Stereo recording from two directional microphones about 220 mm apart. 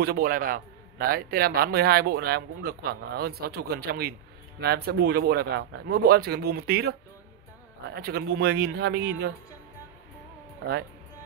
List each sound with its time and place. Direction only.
0.0 s a man's voice: 45° right (ahead or behind)